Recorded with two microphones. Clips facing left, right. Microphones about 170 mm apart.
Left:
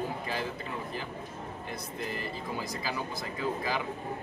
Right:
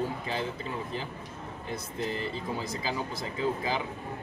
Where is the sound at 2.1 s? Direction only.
25° right (ahead or behind).